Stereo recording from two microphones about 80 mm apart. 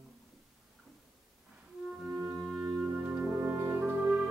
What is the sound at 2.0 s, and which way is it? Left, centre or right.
Music, right.